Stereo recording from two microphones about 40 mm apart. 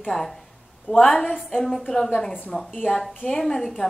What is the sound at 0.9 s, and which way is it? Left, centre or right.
Speech, left.